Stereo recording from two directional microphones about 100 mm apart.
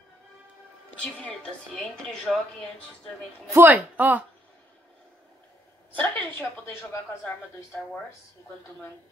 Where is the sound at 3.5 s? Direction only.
20° right (ahead or behind).